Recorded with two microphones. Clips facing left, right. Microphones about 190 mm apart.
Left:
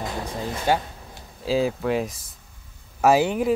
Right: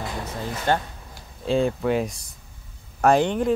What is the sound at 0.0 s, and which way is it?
Music, 15° left (ahead or behind).